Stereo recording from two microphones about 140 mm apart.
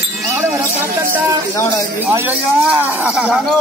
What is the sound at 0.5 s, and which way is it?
Speech, 15° right (ahead or behind).